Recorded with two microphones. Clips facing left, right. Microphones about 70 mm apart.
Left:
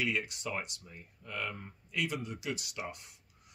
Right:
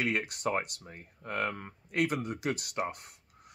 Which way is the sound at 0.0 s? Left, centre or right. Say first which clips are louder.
Right 4 dB; right.